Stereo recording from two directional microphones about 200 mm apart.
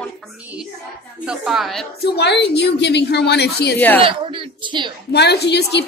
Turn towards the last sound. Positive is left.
turn(degrees=55)  # may be behind; listen again after turning